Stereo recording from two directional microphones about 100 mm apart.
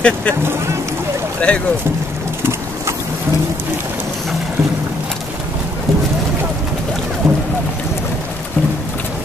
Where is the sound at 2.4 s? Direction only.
25° right (ahead or behind).